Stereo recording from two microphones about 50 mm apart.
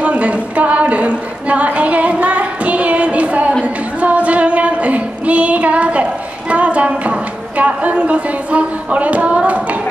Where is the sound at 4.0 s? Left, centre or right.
Right.